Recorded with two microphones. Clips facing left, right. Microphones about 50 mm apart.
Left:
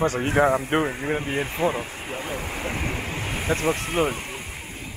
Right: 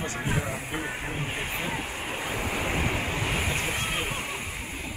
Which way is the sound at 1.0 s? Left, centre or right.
Left.